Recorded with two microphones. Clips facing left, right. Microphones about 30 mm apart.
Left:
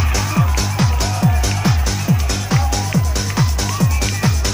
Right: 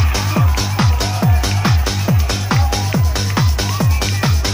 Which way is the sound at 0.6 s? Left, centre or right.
Centre.